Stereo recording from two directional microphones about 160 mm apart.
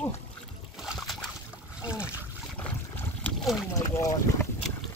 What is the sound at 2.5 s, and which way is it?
Boat, 10° left (ahead or behind).